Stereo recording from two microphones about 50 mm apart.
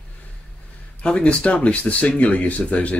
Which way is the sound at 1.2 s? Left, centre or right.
Left.